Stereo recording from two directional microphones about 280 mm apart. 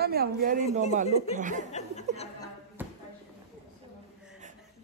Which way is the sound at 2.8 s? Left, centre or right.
Centre.